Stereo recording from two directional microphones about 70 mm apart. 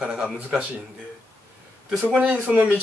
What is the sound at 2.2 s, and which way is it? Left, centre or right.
Speech, centre.